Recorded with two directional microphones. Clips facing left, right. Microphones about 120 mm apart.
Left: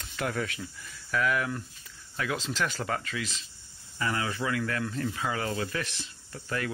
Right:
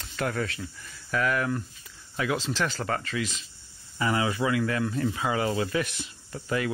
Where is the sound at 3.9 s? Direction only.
15° right (ahead or behind).